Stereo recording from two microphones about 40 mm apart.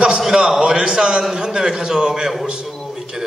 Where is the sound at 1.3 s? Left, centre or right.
Centre.